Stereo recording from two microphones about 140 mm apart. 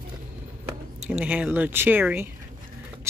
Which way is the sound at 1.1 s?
10° right (ahead or behind).